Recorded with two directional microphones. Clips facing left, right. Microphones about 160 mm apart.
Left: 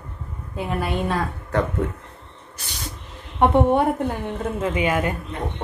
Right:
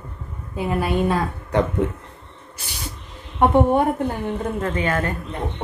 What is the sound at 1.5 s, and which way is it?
Speech, 20° right (ahead or behind).